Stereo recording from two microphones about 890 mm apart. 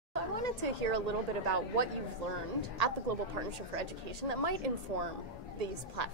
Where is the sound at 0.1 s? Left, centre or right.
Right.